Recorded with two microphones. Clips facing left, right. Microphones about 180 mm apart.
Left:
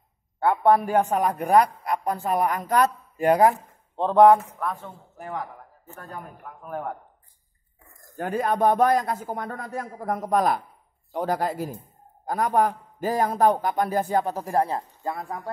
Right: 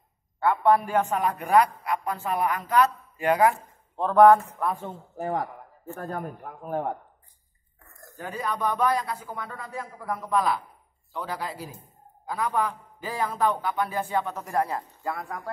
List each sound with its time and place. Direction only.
0.4 s a man's voice: 45° left (ahead or behind)
3.9 s speech: 25° left (ahead or behind)
4.4 s speech: centre (ahead or behind)
5.1 s a man's voice: 40° right (ahead or behind)
8.2 s a man's voice: 50° left (ahead or behind); by 15.5 s 25° left (ahead or behind)